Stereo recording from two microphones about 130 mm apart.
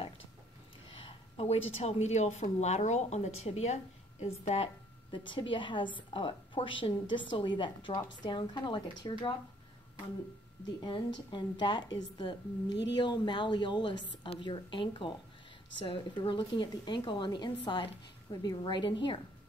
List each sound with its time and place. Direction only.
0.9 s a woman's voice: 45° left (ahead or behind)
5.1 s a woman's voice: 40° left (ahead or behind)
10.8 s a woman's voice: 35° left (ahead or behind)